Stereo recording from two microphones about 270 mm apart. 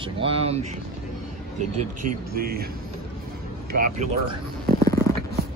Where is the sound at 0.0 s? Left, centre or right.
Right.